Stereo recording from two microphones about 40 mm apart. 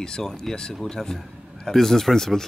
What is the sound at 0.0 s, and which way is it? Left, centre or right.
Speech, centre.